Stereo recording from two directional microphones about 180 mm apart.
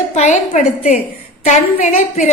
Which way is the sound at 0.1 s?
40° left (ahead or behind).